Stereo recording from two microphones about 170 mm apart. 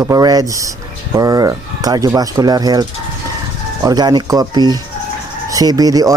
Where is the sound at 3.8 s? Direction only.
25° right (ahead or behind).